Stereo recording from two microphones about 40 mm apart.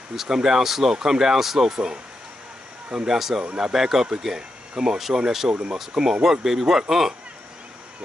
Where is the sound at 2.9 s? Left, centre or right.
Right.